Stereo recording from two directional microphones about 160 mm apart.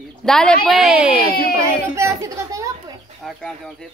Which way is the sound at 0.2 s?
5° left (ahead or behind).